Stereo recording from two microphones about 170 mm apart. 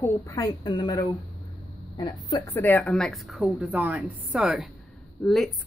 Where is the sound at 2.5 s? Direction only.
10° left (ahead or behind).